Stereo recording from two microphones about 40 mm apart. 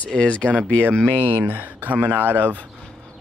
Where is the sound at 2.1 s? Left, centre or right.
Right.